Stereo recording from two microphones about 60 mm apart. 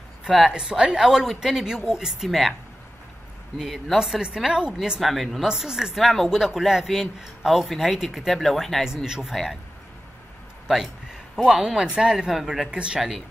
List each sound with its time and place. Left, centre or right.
0.5 s speech: centre
3.5 s speech: centre
4.0 s speech: centre
5.0 s speech: centre
8.8 s speech: centre
11.3 s speech: centre